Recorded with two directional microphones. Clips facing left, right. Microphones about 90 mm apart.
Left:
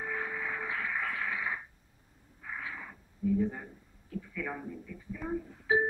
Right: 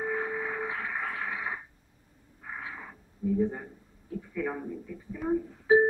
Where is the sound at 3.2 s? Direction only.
25° right (ahead or behind).